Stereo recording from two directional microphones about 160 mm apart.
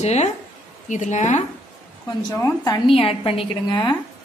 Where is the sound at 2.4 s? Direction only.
20° left (ahead or behind).